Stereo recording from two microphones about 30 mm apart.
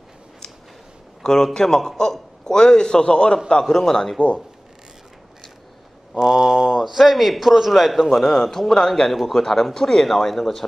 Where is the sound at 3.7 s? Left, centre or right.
Centre.